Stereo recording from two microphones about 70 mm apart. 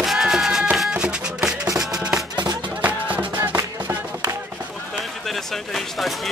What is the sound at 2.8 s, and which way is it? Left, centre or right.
Music, right.